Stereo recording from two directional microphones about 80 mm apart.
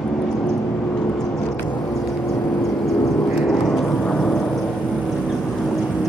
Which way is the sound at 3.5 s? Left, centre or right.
Centre.